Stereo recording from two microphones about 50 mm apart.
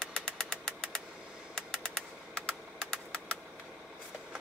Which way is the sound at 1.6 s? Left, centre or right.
Centre.